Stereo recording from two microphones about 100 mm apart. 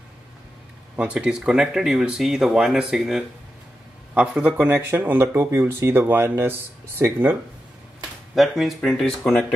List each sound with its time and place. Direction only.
0.9 s speech: 10° right (ahead or behind)
8.4 s speech: centre (ahead or behind)